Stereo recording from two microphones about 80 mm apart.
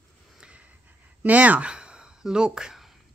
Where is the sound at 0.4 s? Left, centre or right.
Centre.